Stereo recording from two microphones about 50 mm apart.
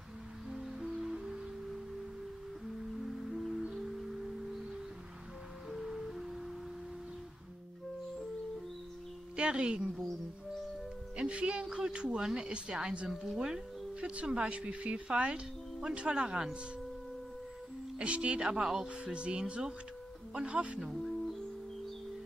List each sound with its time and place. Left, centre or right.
0.5 s music: centre
5.7 s music: centre
9.4 s speech: right
11.1 s speech: right
13.1 s speech: centre
14.1 s speech: right
17.9 s speech: right
20.8 s music: centre